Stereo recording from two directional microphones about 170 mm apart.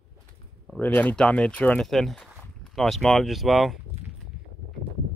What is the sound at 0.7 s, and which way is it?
Speech, 10° left (ahead or behind).